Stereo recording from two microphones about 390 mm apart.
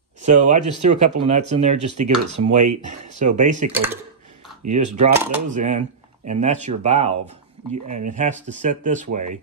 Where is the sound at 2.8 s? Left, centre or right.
Centre.